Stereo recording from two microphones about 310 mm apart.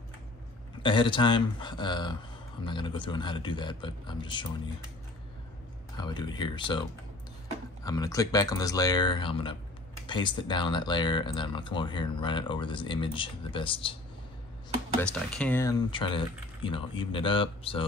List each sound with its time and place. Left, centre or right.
0.8 s speech: centre
5.9 s speech: centre
7.8 s speech: centre
15.0 s speech: centre